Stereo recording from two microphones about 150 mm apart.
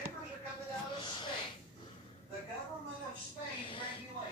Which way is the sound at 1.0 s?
30° left (ahead or behind).